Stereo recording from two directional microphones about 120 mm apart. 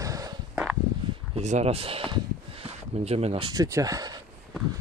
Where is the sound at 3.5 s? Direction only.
30° right (ahead or behind).